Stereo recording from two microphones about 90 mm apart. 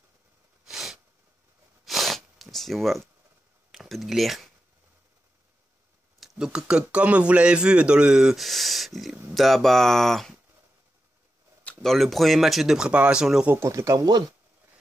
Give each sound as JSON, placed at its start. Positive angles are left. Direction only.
{"t": 0.7, "sound": "sneeze", "side_deg": -5}
{"t": 1.9, "sound": "snort", "side_deg": 0}
{"t": 3.7, "sound": "speech", "side_deg": 0}
{"t": 6.1, "sound": "speech", "side_deg": -5}
{"t": 11.8, "sound": "speech", "side_deg": 0}
{"t": 13.7, "sound": "speech", "side_deg": -35}